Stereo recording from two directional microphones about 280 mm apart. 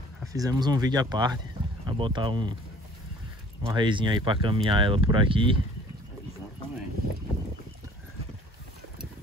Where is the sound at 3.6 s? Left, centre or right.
Centre.